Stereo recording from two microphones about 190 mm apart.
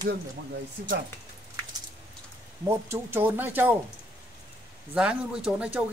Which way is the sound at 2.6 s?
10° right (ahead or behind).